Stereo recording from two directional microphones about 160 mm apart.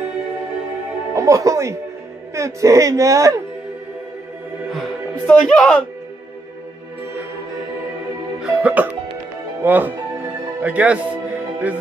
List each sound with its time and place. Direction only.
1.1 s speech: 20° right (ahead or behind)
5.2 s speech: 5° left (ahead or behind)
8.4 s music: 5° right (ahead or behind)
9.6 s speech: 10° right (ahead or behind)